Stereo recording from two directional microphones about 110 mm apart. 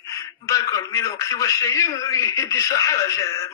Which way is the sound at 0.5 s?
30° left (ahead or behind).